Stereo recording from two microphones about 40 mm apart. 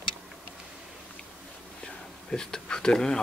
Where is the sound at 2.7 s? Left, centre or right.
Centre.